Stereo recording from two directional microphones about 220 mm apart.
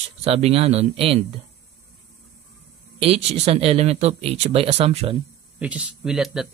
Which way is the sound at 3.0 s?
30° right (ahead or behind).